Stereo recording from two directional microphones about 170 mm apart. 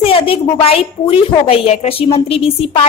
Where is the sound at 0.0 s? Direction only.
30° left (ahead or behind).